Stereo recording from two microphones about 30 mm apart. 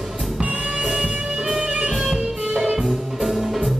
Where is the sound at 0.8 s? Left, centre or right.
Centre.